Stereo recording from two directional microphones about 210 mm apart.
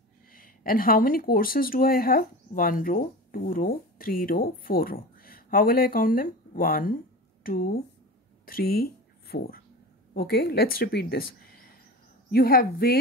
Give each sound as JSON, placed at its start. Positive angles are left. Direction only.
{"t": 0.3, "sound": "speech", "side_deg": 45}
{"t": 11.4, "sound": "a sound", "side_deg": 45}
{"t": 12.3, "sound": "speech", "side_deg": 45}